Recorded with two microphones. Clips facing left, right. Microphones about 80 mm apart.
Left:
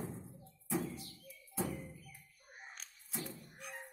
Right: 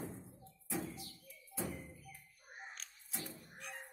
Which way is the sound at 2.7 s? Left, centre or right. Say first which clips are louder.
Left 3 dB; centre.